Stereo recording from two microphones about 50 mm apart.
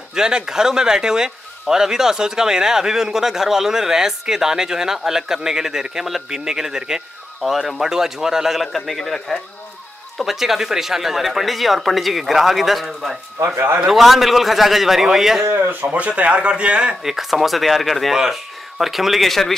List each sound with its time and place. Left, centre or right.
0.1 s speech: centre
10.1 s speech: centre
15.4 s speech: right
15.7 s speech: right
17.0 s speech: centre